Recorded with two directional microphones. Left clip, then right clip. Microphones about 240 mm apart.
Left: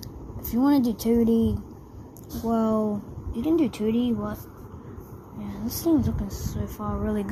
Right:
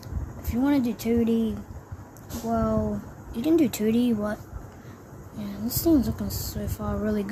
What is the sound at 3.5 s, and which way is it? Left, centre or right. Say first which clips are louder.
Speech: right 1 dB; centre.